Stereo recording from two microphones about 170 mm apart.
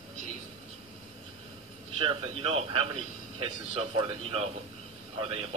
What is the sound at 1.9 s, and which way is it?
A man's voice, 35° right (ahead or behind).